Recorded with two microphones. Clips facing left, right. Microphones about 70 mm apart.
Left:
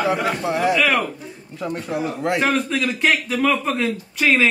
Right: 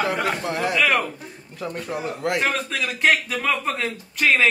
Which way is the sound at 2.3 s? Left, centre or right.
Centre.